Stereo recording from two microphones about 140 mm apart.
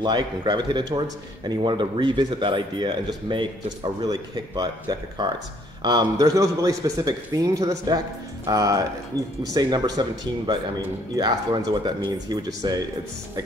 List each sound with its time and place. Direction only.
0.0 s a man's voice: 30° right (ahead or behind)